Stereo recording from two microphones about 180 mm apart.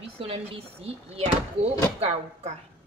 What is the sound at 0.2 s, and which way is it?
A woman's voice, 35° right (ahead or behind).